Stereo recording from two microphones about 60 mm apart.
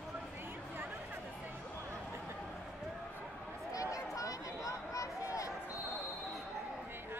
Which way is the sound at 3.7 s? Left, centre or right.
Left.